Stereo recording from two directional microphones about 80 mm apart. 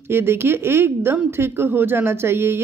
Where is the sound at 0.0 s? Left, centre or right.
Right.